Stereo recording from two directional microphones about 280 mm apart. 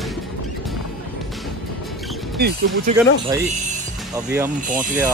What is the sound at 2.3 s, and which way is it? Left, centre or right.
Speech, right.